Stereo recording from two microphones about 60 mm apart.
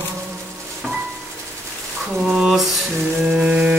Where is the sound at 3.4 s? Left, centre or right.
Centre.